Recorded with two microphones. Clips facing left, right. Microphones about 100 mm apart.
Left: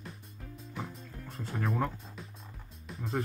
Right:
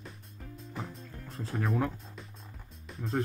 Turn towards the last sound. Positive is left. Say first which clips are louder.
# right 1 dB
turn(degrees=0)  # may be behind; listen again after turning